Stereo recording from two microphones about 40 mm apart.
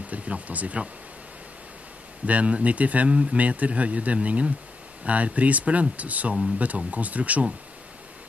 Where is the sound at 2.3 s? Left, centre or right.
Right.